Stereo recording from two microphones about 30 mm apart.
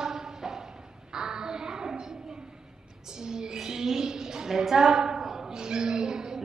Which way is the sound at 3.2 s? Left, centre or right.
Right.